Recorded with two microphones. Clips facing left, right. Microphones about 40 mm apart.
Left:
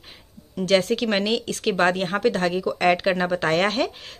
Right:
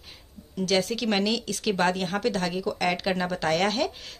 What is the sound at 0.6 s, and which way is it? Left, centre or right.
Speech, left.